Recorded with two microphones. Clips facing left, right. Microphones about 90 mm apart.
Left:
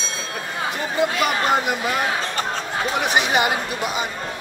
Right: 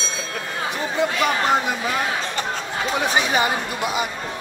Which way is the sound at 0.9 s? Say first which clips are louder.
Even; 5° left (ahead or behind).